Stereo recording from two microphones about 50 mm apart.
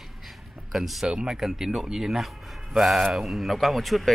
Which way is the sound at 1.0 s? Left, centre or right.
Centre.